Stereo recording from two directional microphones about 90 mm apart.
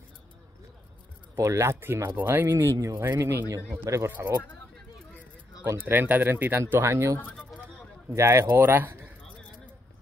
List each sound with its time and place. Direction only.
1.3 s speech: 35° right (ahead or behind)
5.7 s speech: 20° right (ahead or behind)
7.2 s speech: 15° left (ahead or behind)
8.1 s speech: 30° right (ahead or behind)